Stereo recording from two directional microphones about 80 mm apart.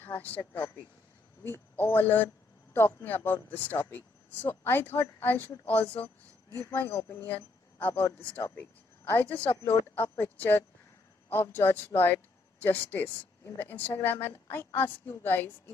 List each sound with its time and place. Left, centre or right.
0.0 s speech: left